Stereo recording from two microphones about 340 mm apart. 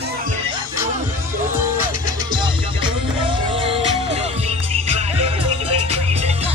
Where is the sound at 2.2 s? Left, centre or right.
Centre.